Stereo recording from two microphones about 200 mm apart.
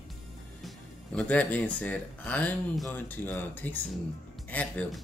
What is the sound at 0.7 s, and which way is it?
Music, 5° left (ahead or behind).